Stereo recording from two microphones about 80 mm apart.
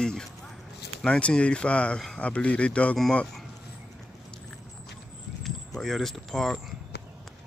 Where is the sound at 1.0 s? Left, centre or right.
Centre.